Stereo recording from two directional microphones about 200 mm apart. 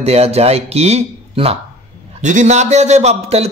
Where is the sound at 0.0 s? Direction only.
30° right (ahead or behind).